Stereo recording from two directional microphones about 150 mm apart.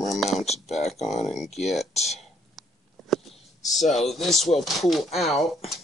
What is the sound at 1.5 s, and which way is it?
Speech, 50° left (ahead or behind).